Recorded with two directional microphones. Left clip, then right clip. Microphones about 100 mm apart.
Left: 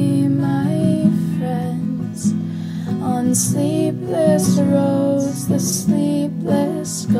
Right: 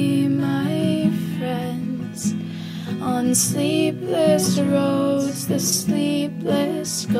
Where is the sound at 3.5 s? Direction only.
35° right (ahead or behind).